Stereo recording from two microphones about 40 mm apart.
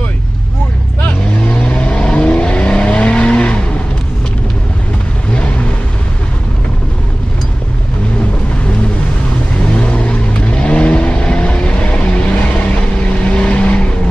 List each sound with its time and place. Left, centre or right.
1.0 s vehicle: left
5.3 s vehicle: left
9.8 s vehicle: left